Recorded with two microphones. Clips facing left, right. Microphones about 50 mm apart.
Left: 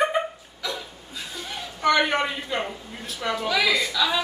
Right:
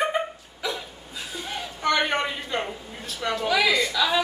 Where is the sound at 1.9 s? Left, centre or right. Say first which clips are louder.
Left 2 dB; centre.